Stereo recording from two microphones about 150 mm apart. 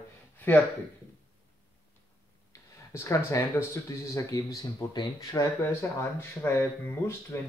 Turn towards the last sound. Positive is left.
turn(degrees=15)  # may be behind; listen again after turning